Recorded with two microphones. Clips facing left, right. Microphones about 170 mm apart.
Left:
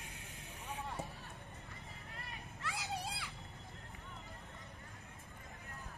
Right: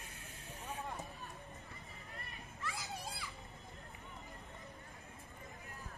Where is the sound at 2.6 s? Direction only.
70° left (ahead or behind).